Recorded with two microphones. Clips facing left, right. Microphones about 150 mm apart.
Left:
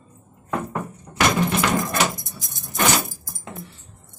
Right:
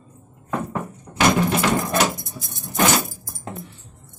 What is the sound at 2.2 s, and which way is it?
Keys jangling, 60° right (ahead or behind).